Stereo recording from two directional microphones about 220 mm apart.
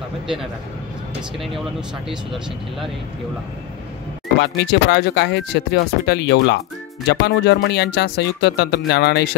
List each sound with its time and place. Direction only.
2.0 s speech: centre (ahead or behind)
4.4 s speech: 50° left (ahead or behind)